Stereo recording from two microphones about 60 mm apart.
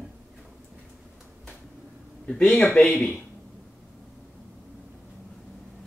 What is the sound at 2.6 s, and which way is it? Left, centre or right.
Speech, left.